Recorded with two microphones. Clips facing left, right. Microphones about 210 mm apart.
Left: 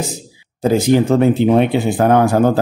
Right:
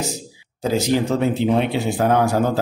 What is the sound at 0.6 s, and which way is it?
A man's voice, 55° left (ahead or behind).